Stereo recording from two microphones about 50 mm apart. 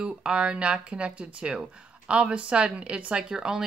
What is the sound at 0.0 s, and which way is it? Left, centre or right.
Speech, centre.